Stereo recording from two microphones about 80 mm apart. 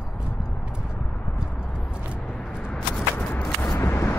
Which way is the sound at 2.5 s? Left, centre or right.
Centre.